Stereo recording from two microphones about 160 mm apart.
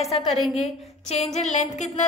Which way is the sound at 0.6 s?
40° left (ahead or behind).